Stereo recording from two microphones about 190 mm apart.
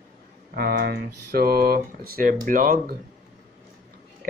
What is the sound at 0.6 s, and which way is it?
Speech, 55° right (ahead or behind).